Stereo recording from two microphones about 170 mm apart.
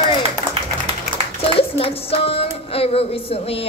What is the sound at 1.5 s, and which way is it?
A woman's voice, 35° left (ahead or behind).